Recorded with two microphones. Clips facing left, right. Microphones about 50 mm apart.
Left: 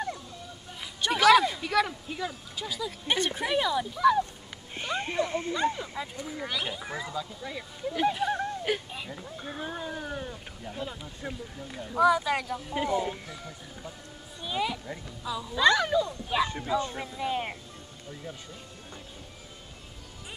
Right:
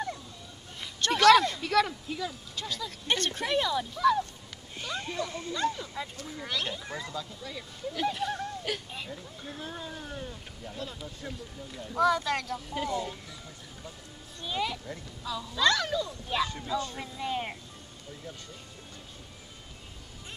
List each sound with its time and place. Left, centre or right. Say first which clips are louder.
1.0 s speech: even; centre
4.7 s speech: left 5 dB; left
8.4 s a sound: left 4 dB; centre
9.1 s speech: left 3 dB; left
14.4 s speech: left 2 dB; centre
17.0 s speech: left 2 dB; centre